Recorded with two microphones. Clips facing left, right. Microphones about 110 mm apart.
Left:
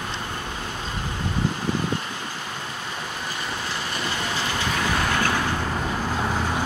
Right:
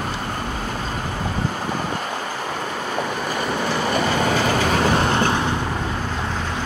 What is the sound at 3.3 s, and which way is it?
Vehicle, 55° right (ahead or behind).